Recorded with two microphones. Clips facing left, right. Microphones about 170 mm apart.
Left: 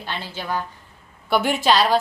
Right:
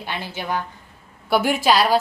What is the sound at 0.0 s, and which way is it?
Speech, 15° right (ahead or behind).